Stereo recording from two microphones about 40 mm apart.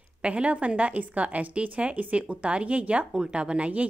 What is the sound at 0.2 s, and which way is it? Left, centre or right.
A woman's voice, right.